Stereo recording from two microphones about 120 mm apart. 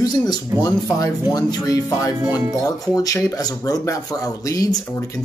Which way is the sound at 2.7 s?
30° left (ahead or behind).